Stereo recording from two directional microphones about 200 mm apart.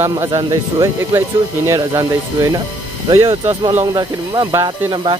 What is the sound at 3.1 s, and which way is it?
Speech, 25° right (ahead or behind).